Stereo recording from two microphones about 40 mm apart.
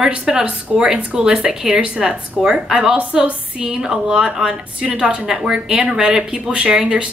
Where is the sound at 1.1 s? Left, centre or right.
Centre.